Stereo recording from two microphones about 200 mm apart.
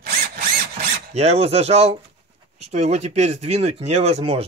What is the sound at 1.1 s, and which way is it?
Speech, 30° right (ahead or behind).